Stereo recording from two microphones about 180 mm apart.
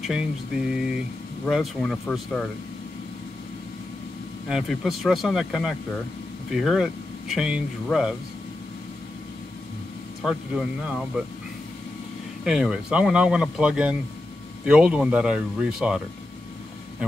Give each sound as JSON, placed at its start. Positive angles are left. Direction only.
{"t": 0.0, "sound": "speech", "side_deg": -5}
{"t": 4.5, "sound": "speech", "side_deg": 0}
{"t": 10.2, "sound": "speech", "side_deg": -5}
{"t": 12.4, "sound": "speech", "side_deg": -5}